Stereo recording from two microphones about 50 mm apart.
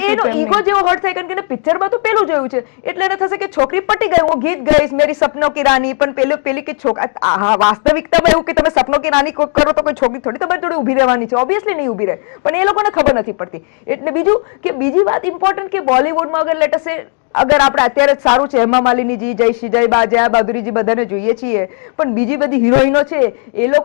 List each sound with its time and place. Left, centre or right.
0.0 s speech: centre